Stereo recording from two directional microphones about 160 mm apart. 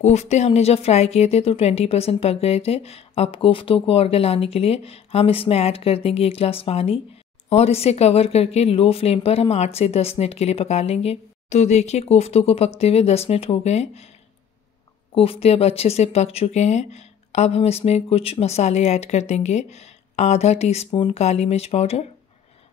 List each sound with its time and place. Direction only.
0.0 s speech: 45° left (ahead or behind)
15.1 s speech: 40° left (ahead or behind)